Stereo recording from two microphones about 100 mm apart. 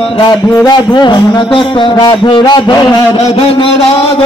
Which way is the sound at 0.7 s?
45° left (ahead or behind).